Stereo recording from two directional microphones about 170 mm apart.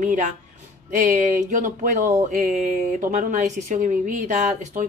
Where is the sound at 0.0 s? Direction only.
50° right (ahead or behind).